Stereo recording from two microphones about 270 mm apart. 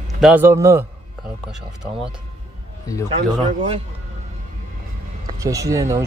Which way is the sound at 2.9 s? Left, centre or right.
Centre.